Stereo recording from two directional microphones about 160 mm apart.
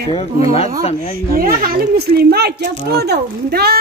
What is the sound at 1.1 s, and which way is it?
A child's voice, 65° right (ahead or behind).